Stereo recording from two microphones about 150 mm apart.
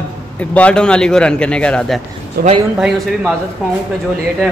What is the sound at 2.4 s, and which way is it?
Speech, 90° right.